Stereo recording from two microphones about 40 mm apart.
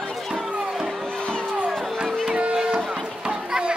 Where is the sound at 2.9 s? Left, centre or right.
Centre.